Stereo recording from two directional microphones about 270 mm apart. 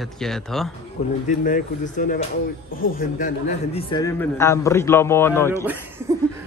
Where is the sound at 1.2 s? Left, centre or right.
Left; by 5.7 s centre.